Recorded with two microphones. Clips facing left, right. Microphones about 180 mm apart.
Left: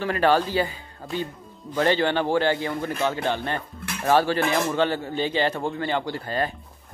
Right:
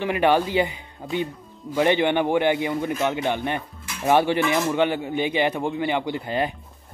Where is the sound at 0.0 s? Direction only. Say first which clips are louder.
Right 1 dB; 15° right (ahead or behind).